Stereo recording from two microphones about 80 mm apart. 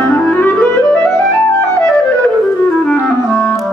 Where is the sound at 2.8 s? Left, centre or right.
Centre.